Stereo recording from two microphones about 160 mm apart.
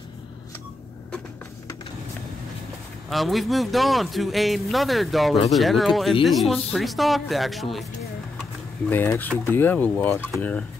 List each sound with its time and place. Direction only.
3.1 s speech: centre (ahead or behind)
8.8 s speech: 15° left (ahead or behind)